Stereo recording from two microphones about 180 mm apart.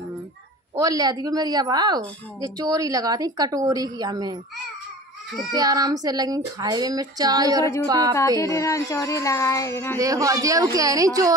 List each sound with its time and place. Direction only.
0.7 s a woman's voice: 20° right (ahead or behind)
5.5 s a woman's voice: 20° right (ahead or behind)
8.4 s speech: 15° left (ahead or behind)
9.9 s a woman's voice: 20° right (ahead or behind)